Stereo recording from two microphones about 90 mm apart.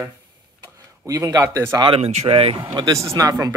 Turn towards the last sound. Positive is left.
turn(degrees=-40)  # may be behind; listen again after turning